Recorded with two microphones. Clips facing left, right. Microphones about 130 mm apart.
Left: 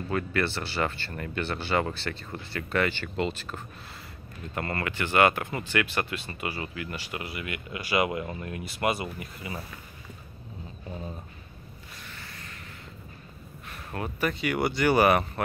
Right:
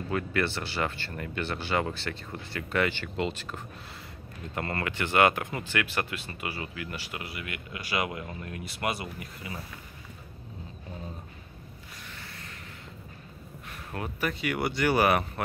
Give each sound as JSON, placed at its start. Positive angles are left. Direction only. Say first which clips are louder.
{"t": 0.1, "sound": "speech", "louder": "left 1 dB", "side_deg": -10}
{"t": 5.1, "sound": "speech", "louder": "left 1 dB", "side_deg": -10}
{"t": 13.7, "sound": "speech", "louder": "left 2 dB", "side_deg": -5}